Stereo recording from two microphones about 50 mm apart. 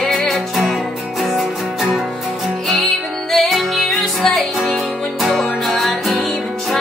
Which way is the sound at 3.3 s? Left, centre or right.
Centre.